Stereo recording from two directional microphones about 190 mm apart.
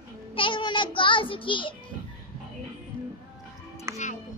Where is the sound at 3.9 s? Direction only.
15° right (ahead or behind).